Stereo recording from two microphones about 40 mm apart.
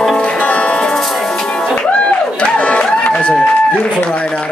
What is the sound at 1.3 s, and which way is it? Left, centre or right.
Music, centre.